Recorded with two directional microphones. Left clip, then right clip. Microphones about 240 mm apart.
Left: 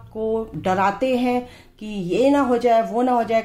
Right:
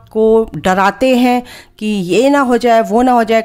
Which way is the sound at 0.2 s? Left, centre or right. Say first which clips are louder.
Right 13 dB; right.